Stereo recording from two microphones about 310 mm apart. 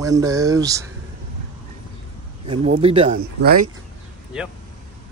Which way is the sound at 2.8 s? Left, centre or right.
Centre.